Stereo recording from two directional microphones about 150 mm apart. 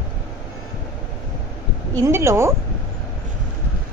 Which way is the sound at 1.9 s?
20° right (ahead or behind).